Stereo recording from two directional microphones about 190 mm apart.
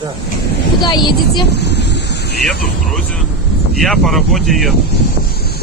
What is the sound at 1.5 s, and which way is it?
Wind, 60° left (ahead or behind).